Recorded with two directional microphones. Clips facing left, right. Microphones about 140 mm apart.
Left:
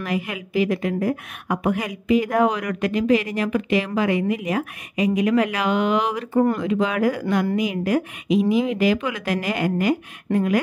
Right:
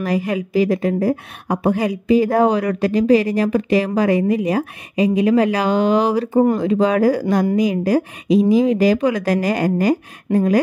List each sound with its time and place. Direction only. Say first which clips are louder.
0.0 s a woman's voice: right 6 dB; 35° right (ahead or behind)